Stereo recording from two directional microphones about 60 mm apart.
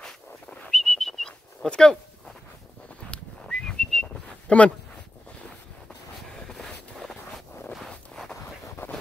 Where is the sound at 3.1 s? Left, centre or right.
Centre.